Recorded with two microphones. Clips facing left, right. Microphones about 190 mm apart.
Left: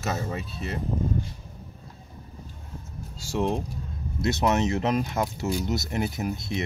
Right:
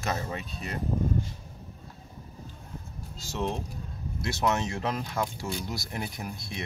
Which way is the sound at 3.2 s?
15° left (ahead or behind).